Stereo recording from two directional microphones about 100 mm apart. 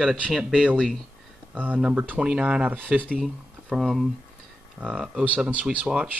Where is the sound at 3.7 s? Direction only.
Centre (ahead or behind).